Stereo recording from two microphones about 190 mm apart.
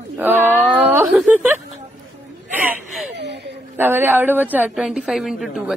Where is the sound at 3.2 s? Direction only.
65° right (ahead or behind).